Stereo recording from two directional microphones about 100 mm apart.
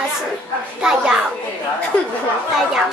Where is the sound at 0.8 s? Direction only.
5° right (ahead or behind).